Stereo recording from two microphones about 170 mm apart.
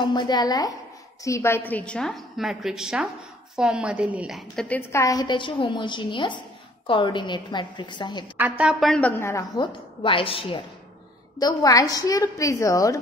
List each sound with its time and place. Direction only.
0.0 s a woman's voice: 25° left (ahead or behind)
8.4 s a woman's voice: 10° right (ahead or behind)
9.2 s a woman's voice: 15° left (ahead or behind)
9.6 s a woman's voice: 30° left (ahead or behind)
11.3 s a woman's voice: 20° left (ahead or behind)